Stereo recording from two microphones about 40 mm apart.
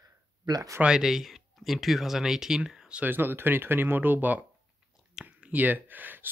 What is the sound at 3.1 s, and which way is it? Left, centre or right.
Speech, right.